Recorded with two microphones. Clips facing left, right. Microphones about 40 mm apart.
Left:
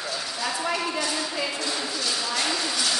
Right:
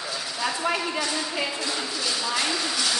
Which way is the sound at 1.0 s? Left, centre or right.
Centre.